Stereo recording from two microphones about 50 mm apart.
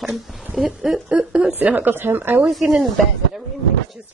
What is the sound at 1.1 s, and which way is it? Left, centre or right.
Speech, right.